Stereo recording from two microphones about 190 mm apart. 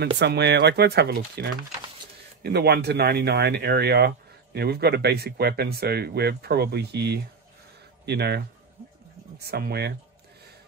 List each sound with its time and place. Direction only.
0.0 s speech: 60° right (ahead or behind)